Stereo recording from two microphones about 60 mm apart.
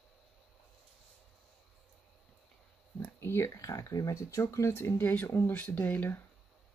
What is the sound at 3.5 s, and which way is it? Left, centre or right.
Speech, left.